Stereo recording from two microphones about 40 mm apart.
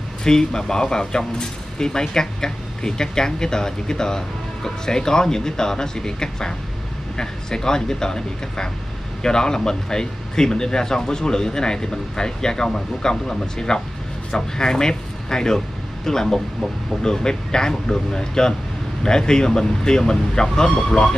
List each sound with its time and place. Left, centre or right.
0.2 s speech: centre